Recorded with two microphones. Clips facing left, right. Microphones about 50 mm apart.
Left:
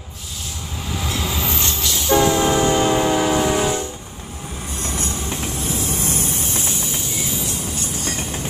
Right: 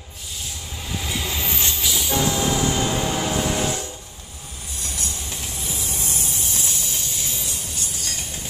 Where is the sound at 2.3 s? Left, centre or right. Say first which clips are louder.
Left 5 dB; left.